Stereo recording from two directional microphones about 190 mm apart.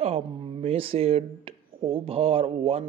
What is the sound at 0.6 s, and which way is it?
Speech, 30° right (ahead or behind).